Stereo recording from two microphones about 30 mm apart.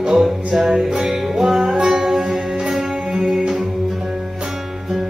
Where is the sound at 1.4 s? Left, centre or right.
Centre.